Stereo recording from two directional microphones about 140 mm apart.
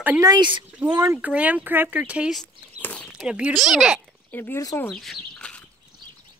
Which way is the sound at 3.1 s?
5° right (ahead or behind).